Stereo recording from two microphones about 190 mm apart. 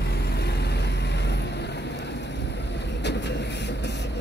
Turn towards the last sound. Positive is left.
turn(degrees=65)  # may be behind; listen again after turning